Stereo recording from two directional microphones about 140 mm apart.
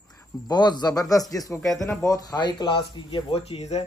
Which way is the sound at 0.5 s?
30° left (ahead or behind).